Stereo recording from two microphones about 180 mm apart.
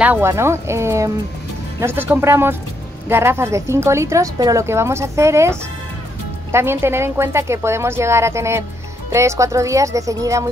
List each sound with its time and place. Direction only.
0.0 s a woman's voice: 10° right (ahead or behind)